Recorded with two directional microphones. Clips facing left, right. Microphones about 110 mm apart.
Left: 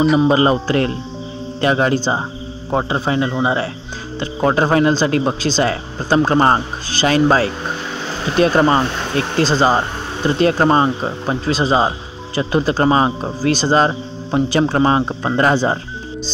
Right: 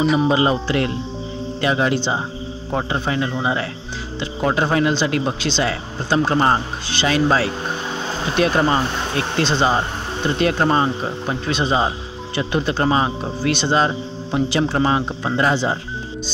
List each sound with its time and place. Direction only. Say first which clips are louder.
0.3 s speech: left 3 dB; 40° left (ahead or behind)
2.7 s speech: left 4 dB; 30° left (ahead or behind)
4.2 s speech: left 4 dB; 40° left (ahead or behind)